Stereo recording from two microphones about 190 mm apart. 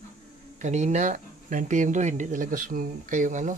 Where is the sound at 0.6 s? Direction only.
40° right (ahead or behind).